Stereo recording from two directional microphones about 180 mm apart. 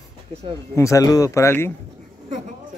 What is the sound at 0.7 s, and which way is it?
Speech, 15° left (ahead or behind).